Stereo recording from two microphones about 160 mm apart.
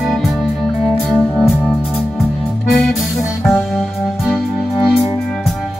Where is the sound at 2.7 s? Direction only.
Centre (ahead or behind).